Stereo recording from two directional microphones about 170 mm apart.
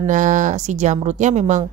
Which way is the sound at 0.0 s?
45° right (ahead or behind).